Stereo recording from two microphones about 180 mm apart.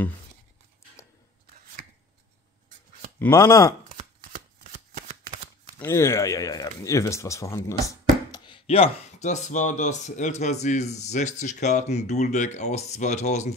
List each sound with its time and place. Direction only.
3.2 s speech: 15° left (ahead or behind)
3.9 s shuffling cards: 40° right (ahead or behind)
5.8 s speech: 15° left (ahead or behind); by 13.6 s 40° left (ahead or behind)